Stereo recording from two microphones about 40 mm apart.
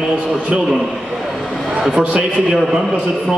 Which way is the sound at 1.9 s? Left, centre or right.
Centre.